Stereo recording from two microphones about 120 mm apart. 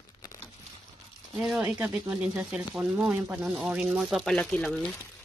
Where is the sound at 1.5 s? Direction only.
15° right (ahead or behind); by 4.8 s 10° left (ahead or behind).